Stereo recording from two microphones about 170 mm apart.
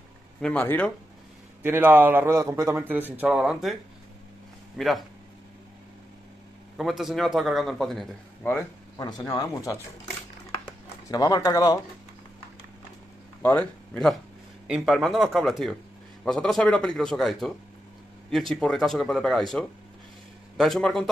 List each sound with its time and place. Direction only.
0.4 s speech: 10° left (ahead or behind)
1.6 s a man's voice: 10° right (ahead or behind)
4.7 s a man's voice: centre (ahead or behind)
6.8 s a man's voice: centre (ahead or behind)
8.9 s speech: 25° left (ahead or behind)
11.1 s speech: 20° left (ahead or behind)
13.4 s a man's voice: 10° left (ahead or behind)